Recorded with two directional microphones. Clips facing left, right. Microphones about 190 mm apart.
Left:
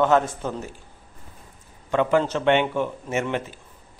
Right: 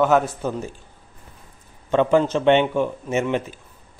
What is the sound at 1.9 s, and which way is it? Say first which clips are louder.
A man's voice: right 3 dB; 20° right (ahead or behind).